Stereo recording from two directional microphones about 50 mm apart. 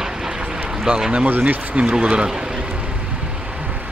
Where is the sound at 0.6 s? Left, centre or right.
Centre.